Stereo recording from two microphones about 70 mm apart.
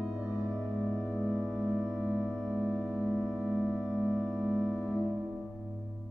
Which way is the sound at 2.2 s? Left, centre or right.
Centre.